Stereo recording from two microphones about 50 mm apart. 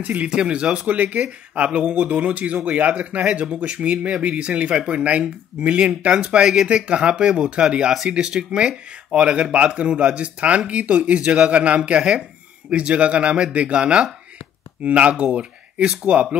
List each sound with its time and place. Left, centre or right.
0.0 s speech: right
0.3 s speech: centre
0.8 s speech: right